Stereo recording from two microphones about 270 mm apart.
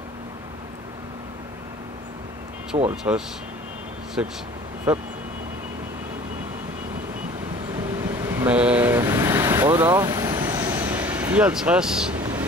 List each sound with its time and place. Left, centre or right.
2.7 s speech: centre
4.2 s speech: centre
7.7 s vehicle: centre
12.2 s a sound: centre